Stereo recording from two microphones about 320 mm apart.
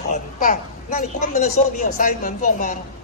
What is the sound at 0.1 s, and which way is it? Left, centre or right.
A man's voice, left.